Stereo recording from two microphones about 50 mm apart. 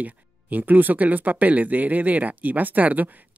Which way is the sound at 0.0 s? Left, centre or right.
Right.